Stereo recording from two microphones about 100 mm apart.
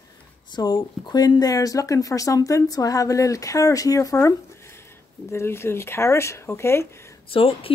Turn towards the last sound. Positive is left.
turn(degrees=65)  # may be behind; listen again after turning